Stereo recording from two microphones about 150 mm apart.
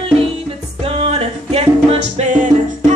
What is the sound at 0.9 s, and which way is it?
Music, 40° right (ahead or behind).